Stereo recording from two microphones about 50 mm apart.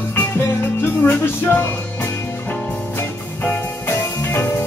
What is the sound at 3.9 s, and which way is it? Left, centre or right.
Music, left.